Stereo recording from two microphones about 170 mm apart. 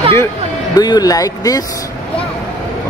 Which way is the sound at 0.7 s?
25° left (ahead or behind).